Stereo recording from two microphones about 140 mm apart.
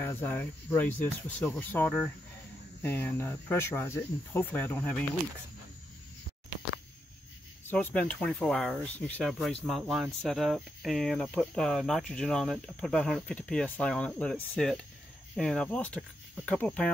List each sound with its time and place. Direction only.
0.0 s speech: 15° left (ahead or behind)
7.7 s speech: 10° left (ahead or behind)